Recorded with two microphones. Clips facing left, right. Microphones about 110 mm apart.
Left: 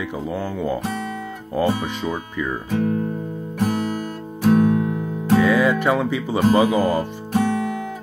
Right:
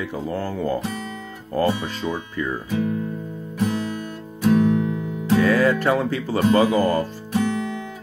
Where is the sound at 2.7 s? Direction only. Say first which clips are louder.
Left 3 dB; 50° left (ahead or behind).